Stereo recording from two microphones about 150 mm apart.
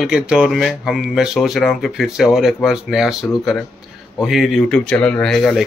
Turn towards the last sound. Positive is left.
turn(degrees=5)  # may be behind; listen again after turning